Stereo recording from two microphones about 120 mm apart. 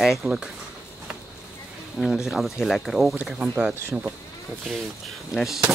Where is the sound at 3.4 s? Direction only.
15° right (ahead or behind).